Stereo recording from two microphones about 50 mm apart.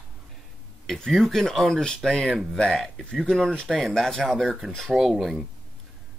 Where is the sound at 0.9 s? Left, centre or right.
Centre.